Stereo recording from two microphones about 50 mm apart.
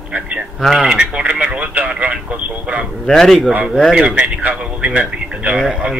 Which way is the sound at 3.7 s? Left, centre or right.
Centre.